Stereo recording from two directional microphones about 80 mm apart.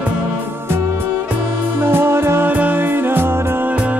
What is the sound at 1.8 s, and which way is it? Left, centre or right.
Music, right.